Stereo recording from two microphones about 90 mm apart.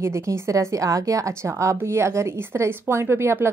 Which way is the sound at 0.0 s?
35° right (ahead or behind).